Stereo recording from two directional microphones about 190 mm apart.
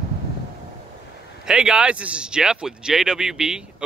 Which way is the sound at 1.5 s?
5° right (ahead or behind).